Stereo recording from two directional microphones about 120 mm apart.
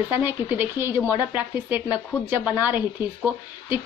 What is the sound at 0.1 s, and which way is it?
Speech, 15° right (ahead or behind).